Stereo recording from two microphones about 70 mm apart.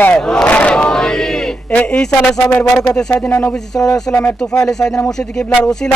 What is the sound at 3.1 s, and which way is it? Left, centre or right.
Speech, left.